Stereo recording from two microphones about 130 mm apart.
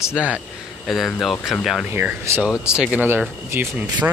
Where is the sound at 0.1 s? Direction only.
10° right (ahead or behind).